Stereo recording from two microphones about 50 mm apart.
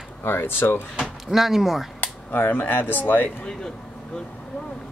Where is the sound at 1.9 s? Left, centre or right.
Left.